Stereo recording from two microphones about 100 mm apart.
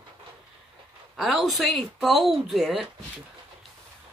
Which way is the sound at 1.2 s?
Centre (ahead or behind).